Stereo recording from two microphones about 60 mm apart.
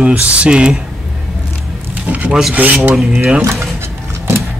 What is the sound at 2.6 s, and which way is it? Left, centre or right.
Speech, right.